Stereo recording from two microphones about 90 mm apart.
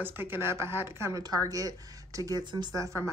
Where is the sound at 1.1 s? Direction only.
40° right (ahead or behind).